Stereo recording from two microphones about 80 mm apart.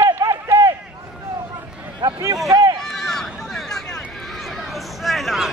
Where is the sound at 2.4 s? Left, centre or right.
Right.